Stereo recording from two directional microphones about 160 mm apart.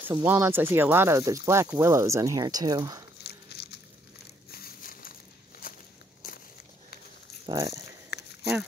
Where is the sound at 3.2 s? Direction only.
90° left.